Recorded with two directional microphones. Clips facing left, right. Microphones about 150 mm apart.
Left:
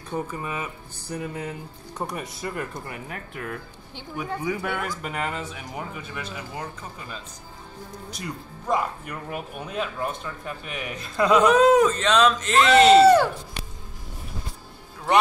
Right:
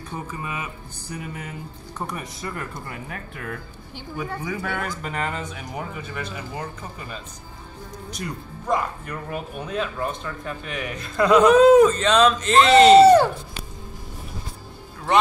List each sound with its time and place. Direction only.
0.4 s speech: 40° left (ahead or behind)
4.2 s speech: 10° left (ahead or behind)
8.1 s speech: centre (ahead or behind)
13.0 s speech: 25° right (ahead or behind)